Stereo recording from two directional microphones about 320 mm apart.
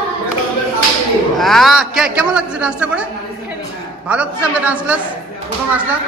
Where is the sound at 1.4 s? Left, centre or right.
Centre.